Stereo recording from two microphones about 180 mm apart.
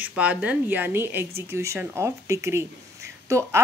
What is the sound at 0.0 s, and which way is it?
A woman's voice, 5° right (ahead or behind).